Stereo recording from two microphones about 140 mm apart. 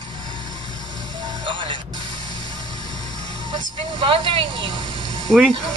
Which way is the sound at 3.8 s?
40° right (ahead or behind).